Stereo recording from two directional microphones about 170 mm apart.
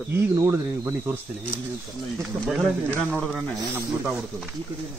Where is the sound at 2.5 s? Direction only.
5° right (ahead or behind).